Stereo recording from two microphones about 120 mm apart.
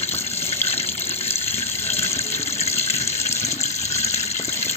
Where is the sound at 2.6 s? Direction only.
60° left (ahead or behind).